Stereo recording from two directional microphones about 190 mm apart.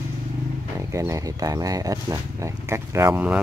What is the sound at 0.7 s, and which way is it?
Speech, 15° right (ahead or behind).